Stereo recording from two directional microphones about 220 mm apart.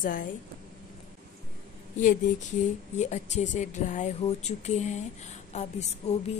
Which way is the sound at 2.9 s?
30° left (ahead or behind).